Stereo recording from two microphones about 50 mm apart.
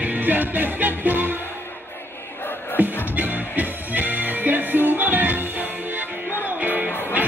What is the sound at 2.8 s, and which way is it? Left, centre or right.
Music, right.